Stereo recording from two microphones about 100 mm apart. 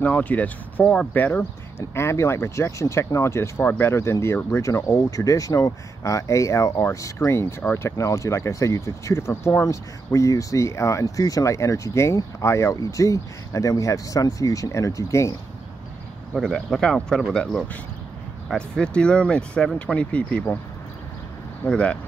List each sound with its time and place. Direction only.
0.0 s speech: 15° left (ahead or behind); by 15.3 s 30° left (ahead or behind)
16.3 s speech: 5° left (ahead or behind)
21.6 s speech: 10° left (ahead or behind)